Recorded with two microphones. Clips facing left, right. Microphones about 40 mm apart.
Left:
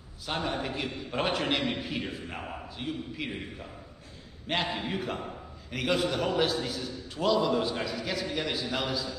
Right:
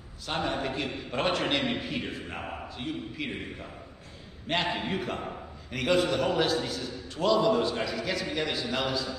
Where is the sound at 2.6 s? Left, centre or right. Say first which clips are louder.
Right 1 dB; centre.